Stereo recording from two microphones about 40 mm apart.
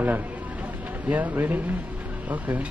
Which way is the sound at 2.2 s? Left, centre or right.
Right.